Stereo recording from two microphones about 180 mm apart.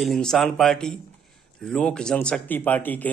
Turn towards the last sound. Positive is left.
turn(degrees=10)  # may be behind; listen again after turning